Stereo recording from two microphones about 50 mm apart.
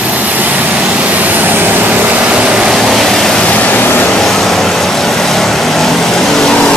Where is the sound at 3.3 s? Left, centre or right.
Left.